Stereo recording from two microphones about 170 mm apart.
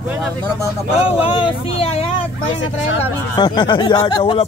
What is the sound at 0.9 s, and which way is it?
Speech, 30° left (ahead or behind).